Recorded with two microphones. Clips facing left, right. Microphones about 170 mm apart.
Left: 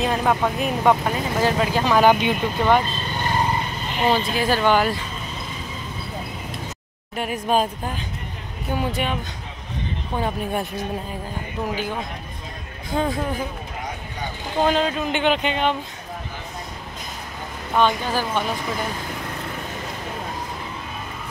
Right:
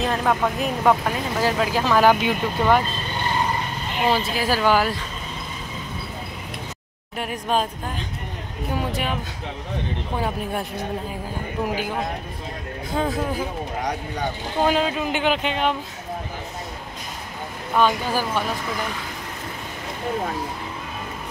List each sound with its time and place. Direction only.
0.0 s speech: 5° left (ahead or behind)
4.1 s speech: 5° right (ahead or behind)
7.2 s speech: 5° left (ahead or behind)
8.7 s speech: centre (ahead or behind)
10.2 s speech: centre (ahead or behind)
12.9 s speech: centre (ahead or behind)
14.6 s speech: 5° right (ahead or behind)
17.7 s speech: 5° right (ahead or behind)